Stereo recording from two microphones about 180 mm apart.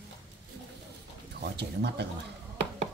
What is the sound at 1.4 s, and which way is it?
Speech, 65° right (ahead or behind).